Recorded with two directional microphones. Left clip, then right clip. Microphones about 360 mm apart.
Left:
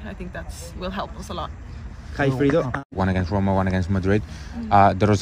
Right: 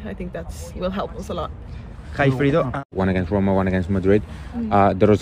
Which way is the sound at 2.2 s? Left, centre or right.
Right.